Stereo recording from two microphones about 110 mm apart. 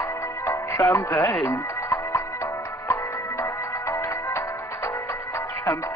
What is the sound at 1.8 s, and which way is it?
Music, 30° left (ahead or behind).